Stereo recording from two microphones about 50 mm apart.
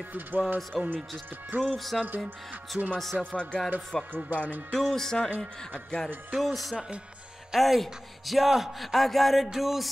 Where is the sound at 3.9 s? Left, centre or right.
Centre.